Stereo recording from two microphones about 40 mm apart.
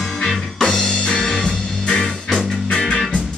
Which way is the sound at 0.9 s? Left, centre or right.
Left.